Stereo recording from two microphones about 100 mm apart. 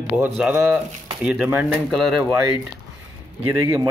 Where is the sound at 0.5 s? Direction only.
20° right (ahead or behind).